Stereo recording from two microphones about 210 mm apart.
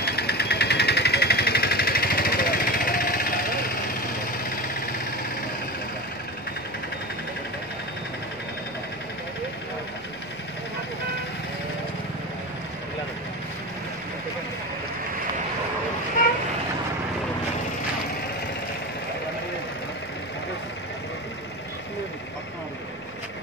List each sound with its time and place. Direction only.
0.0 s vehicle: 50° left (ahead or behind)